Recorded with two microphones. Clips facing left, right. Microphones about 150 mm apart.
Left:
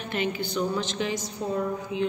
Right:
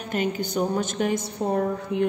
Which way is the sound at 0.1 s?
45° right (ahead or behind).